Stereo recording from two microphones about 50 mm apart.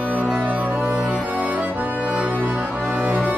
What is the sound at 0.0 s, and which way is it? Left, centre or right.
Music, left.